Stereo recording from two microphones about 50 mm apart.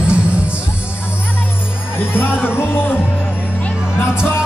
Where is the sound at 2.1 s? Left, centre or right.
Left.